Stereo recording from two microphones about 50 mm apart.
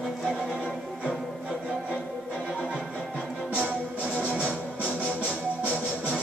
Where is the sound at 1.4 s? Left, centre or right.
Centre.